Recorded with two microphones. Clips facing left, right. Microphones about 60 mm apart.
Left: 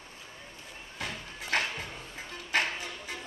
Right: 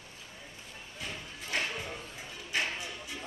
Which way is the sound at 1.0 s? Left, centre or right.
Left.